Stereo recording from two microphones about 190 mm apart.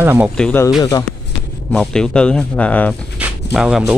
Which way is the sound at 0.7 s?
20° left (ahead or behind).